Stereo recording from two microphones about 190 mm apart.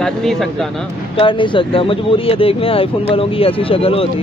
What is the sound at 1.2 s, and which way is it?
Speech, 25° left (ahead or behind).